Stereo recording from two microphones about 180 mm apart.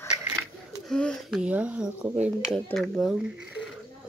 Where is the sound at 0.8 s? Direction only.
5° left (ahead or behind).